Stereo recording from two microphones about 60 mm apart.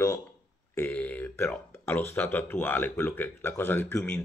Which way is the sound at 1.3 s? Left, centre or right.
Left.